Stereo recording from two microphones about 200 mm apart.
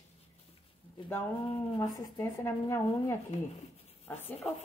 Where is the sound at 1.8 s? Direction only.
15° left (ahead or behind).